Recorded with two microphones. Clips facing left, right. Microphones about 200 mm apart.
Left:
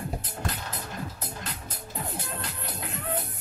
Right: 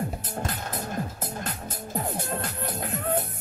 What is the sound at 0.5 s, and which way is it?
Music, 50° right (ahead or behind).